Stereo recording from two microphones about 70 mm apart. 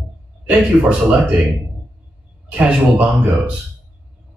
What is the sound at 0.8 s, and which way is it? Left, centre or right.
Speech, centre.